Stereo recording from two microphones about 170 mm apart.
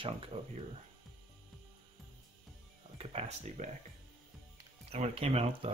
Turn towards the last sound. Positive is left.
turn(degrees=-35)  # may be behind; listen again after turning